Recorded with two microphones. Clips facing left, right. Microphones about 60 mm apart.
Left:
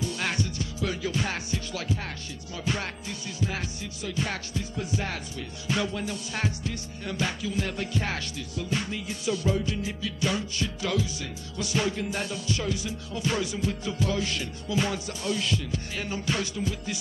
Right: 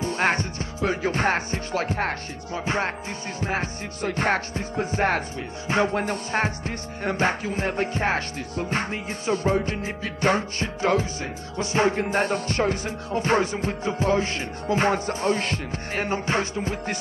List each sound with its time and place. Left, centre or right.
0.0 s music: right